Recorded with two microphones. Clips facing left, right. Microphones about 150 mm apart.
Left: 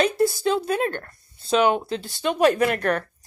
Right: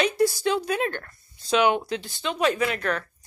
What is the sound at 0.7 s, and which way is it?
Speech, 40° left (ahead or behind).